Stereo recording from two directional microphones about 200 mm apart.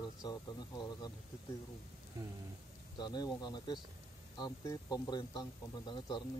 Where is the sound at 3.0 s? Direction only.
20° left (ahead or behind).